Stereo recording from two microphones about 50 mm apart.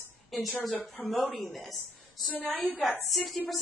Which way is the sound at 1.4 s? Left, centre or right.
Centre.